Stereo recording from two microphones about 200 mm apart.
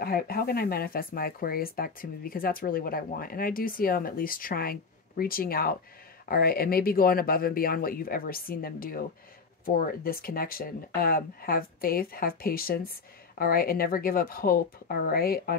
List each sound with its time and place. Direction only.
0.0 s speech: 50° left (ahead or behind)